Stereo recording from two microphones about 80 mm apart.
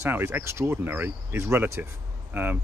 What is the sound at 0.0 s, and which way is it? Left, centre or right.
Speech, right.